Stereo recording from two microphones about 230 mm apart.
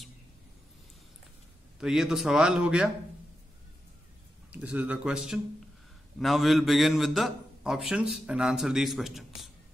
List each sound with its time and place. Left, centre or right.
1.8 s a man's voice: centre
4.5 s a man's voice: centre